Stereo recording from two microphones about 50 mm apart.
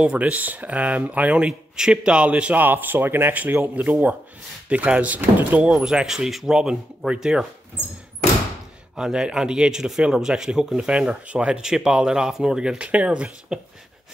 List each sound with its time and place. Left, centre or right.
0.0 s speech: right
2.6 s speech: right
3.7 s speech: right
5.9 s speech: centre
8.9 s speech: centre